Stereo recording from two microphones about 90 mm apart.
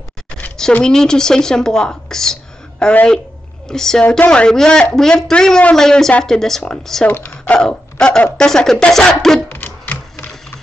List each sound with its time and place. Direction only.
0.7 s speech: 10° left (ahead or behind)
7.1 s speech: 25° left (ahead or behind)
7.5 s speech: 10° left (ahead or behind)
9.5 s music: 20° left (ahead or behind)